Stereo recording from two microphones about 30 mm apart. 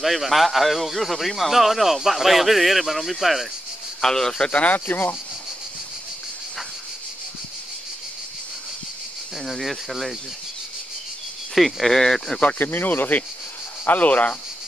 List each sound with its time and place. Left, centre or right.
0.0 s a man's voice: centre
4.0 s speech: centre
4.5 s speech: left
4.7 s speech: left
9.5 s a man's voice: centre
11.5 s a man's voice: centre
11.9 s speech: centre
12.5 s speech: left
13.8 s speech: left